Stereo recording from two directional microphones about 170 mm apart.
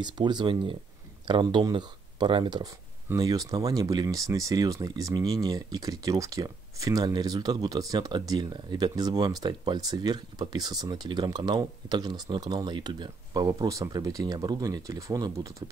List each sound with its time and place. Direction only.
0.0 s speech: 25° right (ahead or behind)